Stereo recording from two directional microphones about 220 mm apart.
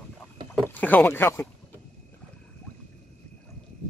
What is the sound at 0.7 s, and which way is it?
Speech, 10° left (ahead or behind).